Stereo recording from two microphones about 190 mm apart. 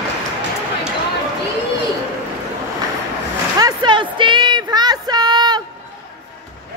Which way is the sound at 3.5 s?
20° right (ahead or behind).